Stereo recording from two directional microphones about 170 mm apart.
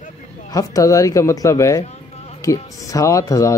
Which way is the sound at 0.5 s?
20° left (ahead or behind).